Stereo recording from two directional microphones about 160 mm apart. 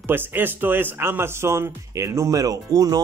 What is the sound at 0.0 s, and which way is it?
Speech, 15° right (ahead or behind).